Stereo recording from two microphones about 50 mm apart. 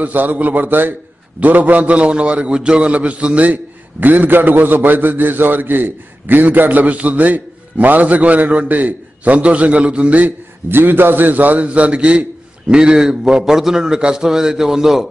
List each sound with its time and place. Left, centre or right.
0.0 s a man's voice: right
10.7 s a man's voice: right; by 15.0 s centre